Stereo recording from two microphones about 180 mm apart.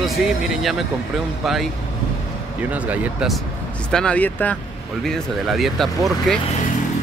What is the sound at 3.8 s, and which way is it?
Speech, 5° left (ahead or behind).